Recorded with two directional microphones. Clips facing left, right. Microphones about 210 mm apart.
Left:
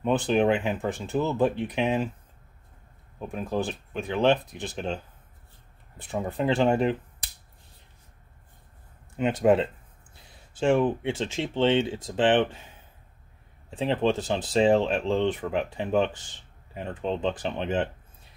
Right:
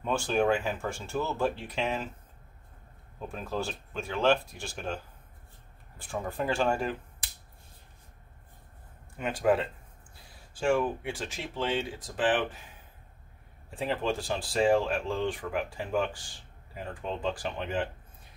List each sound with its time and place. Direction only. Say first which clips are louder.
0.0 s speech: left 5 dB; 20° left (ahead or behind)
3.3 s speech: left 5 dB; 15° left (ahead or behind)
9.1 s speech: left 5 dB; 25° left (ahead or behind)
13.7 s speech: left 6 dB; 20° left (ahead or behind)